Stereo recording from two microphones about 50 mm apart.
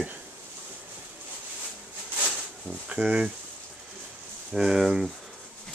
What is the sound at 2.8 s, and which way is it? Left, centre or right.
Speech, right.